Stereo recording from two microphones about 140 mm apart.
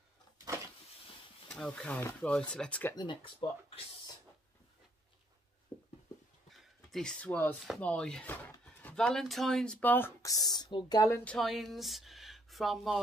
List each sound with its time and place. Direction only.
1.5 s speech: 5° left (ahead or behind)
2.9 s speech: 35° left (ahead or behind)
5.7 s a sound: 10° left (ahead or behind)
6.5 s a sound: centre (ahead or behind)
7.8 s speech: 5° left (ahead or behind); by 11.1 s 30° left (ahead or behind)
11.2 s speech: centre (ahead or behind)